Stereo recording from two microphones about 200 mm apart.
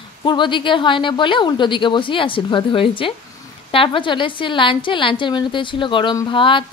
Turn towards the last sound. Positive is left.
turn(degrees=25)  # may be behind; listen again after turning